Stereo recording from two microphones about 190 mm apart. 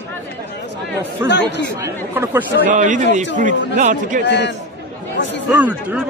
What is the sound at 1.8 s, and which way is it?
Speech, 10° right (ahead or behind).